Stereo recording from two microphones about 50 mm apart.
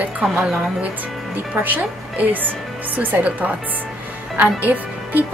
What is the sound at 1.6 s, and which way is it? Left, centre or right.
Speech, right.